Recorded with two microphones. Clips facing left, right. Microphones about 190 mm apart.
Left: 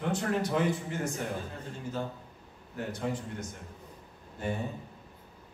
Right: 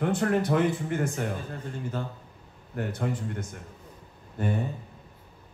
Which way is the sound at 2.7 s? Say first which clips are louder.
Right 3 dB; 60° right (ahead or behind).